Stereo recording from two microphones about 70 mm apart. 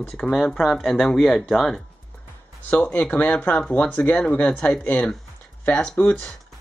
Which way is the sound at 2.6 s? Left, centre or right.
Left.